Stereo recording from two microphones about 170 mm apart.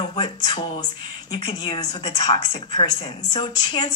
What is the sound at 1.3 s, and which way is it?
Speech, 25° left (ahead or behind).